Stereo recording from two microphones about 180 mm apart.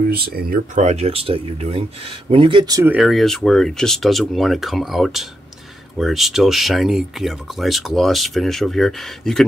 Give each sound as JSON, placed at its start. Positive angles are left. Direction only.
{"t": 0.1, "sound": "speech", "side_deg": -55}
{"t": 2.9, "sound": "speech", "side_deg": 0}